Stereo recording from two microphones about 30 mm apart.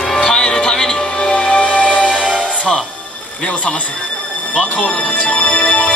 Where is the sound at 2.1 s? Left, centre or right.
Right.